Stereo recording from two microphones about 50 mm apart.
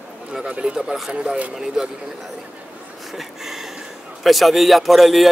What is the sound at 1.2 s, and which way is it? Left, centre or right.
Speech, right.